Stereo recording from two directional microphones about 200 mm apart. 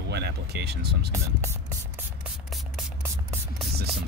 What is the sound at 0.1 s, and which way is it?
Speech, 55° right (ahead or behind).